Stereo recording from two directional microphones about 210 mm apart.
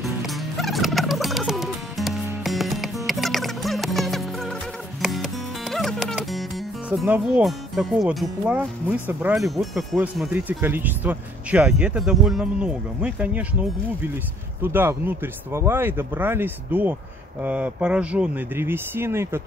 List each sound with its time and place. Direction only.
0.0 s turkey: centre (ahead or behind)
5.0 s music: centre (ahead or behind)
6.9 s speech: 5° right (ahead or behind)